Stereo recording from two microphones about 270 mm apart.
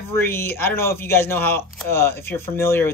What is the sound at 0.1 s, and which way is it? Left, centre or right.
Speech, centre.